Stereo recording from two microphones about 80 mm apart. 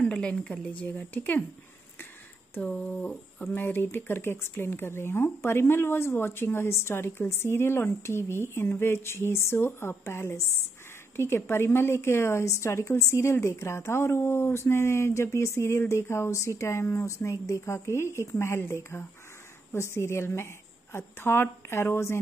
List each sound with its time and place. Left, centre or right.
0.0 s a woman's voice: centre
2.6 s a woman's voice: centre
3.5 s a woman's voice: left